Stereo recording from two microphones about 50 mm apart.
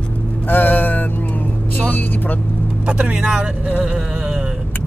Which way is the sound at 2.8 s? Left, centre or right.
Right.